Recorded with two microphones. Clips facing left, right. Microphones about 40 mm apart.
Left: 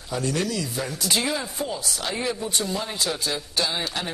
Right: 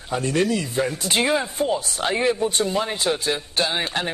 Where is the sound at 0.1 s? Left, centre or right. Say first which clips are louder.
Right 5 dB; right.